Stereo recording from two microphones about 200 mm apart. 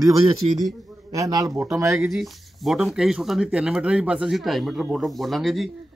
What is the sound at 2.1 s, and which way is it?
Speech, centre (ahead or behind).